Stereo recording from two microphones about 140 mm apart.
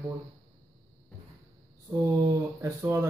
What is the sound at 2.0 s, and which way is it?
Speech, 20° right (ahead or behind).